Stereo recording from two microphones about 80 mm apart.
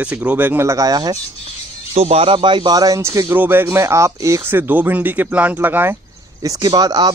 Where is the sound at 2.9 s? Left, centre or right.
Right.